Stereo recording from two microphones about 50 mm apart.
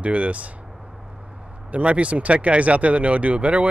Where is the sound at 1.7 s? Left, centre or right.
Right.